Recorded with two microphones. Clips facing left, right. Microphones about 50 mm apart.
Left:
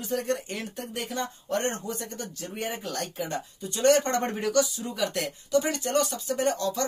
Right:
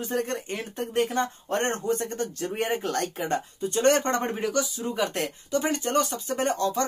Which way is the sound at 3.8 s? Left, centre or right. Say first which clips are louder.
Even; right.